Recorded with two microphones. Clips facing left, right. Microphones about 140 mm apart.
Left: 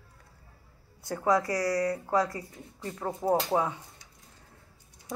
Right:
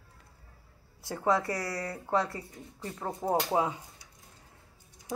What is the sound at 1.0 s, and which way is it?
Speech, 25° right (ahead or behind).